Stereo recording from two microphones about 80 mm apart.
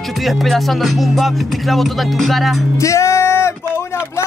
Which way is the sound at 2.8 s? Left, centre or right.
Left.